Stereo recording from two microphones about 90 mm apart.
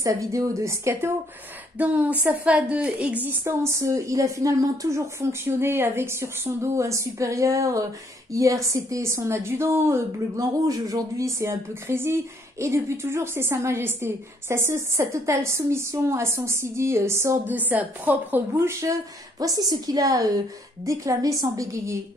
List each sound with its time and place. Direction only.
0.0 s a woman's voice: 35° right (ahead or behind)
1.8 s a woman's voice: 15° right (ahead or behind)
3.4 s a woman's voice: 35° right (ahead or behind)
19.4 s a woman's voice: 45° right (ahead or behind)